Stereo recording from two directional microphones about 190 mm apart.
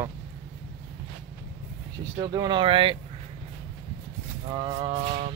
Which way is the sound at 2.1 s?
25° right (ahead or behind).